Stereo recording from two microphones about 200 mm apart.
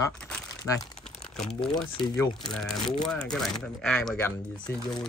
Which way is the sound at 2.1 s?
20° left (ahead or behind).